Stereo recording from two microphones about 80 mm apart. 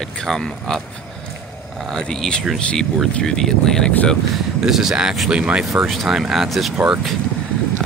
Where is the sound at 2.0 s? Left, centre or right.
Centre.